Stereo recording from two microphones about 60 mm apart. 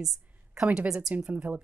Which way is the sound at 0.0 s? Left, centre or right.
Centre.